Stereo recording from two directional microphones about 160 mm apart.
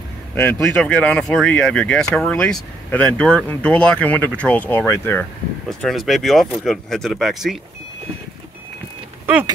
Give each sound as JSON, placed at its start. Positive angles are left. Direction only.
{"t": 0.3, "sound": "speech", "side_deg": 10}
{"t": 5.7, "sound": "speech", "side_deg": 0}
{"t": 9.2, "sound": "vehicle", "side_deg": -15}